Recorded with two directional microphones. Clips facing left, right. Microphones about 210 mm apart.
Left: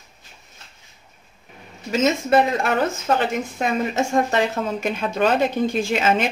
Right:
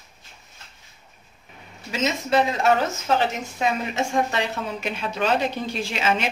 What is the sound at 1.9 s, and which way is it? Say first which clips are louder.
Speech: left 4 dB; 50° left (ahead or behind).